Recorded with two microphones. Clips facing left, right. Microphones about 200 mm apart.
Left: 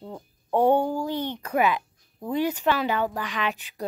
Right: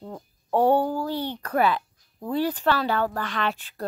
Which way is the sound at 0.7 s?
15° left (ahead or behind).